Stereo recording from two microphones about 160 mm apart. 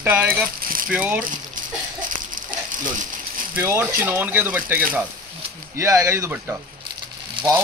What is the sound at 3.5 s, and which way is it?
Speech, 15° right (ahead or behind).